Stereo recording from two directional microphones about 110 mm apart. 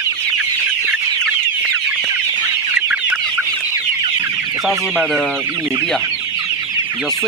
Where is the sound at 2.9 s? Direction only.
10° right (ahead or behind).